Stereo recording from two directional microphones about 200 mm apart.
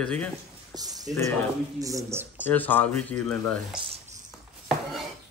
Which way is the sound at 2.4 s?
10° left (ahead or behind).